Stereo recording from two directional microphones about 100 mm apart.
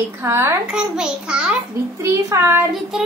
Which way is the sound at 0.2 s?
25° right (ahead or behind).